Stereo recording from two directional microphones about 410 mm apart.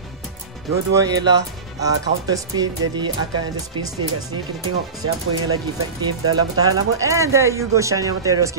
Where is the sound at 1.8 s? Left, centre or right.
Centre.